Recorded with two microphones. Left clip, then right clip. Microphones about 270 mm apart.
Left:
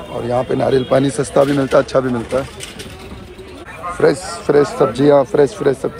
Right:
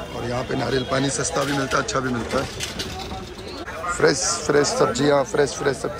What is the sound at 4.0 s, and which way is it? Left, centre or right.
Speech, centre.